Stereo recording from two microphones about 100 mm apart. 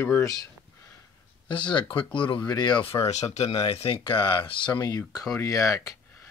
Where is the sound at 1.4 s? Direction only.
50° left (ahead or behind); by 3.6 s 90° left.